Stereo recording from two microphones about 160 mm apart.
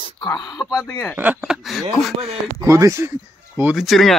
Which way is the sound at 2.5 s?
20° right (ahead or behind).